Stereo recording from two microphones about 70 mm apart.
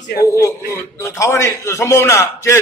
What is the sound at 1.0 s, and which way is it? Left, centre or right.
A man's voice, left.